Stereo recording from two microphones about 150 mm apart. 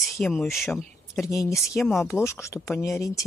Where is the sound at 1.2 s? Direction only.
20° left (ahead or behind).